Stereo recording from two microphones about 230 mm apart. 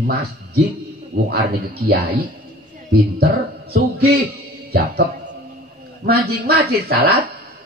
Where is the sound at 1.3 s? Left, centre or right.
Right.